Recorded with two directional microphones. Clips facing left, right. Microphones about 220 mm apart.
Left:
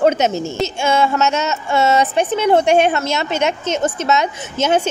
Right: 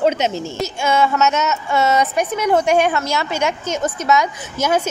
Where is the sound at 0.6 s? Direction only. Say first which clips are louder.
Left 1 dB; 25° left (ahead or behind).